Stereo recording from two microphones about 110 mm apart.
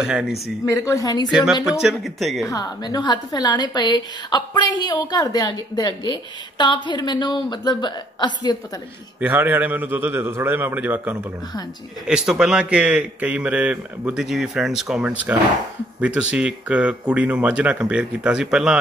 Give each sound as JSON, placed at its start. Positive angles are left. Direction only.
{"t": 0.0, "sound": "speech", "side_deg": -5}
{"t": 0.7, "sound": "a woman's voice", "side_deg": 30}
{"t": 1.3, "sound": "speech", "side_deg": -5}
{"t": 2.5, "sound": "a woman's voice", "side_deg": 35}
{"t": 9.2, "sound": "speech", "side_deg": -15}